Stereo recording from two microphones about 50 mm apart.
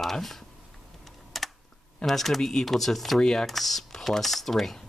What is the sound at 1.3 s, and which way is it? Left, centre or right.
Typing, centre.